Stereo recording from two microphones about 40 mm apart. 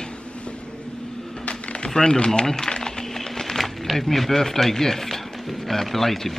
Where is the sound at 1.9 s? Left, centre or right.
Centre.